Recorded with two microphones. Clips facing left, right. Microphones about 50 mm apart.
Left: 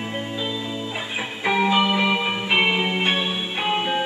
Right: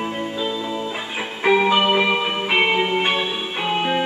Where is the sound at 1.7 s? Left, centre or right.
Right.